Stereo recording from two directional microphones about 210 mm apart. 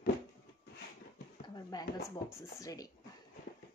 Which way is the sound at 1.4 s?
20° left (ahead or behind).